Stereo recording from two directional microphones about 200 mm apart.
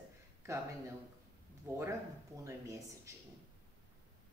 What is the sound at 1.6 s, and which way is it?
A woman's voice, 10° right (ahead or behind).